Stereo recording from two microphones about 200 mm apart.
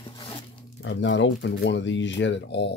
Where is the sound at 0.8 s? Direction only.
65° left (ahead or behind).